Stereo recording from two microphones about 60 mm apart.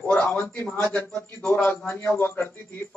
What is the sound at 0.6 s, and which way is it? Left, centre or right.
Speech, left.